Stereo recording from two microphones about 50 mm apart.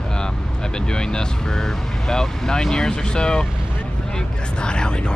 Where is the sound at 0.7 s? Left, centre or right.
Centre.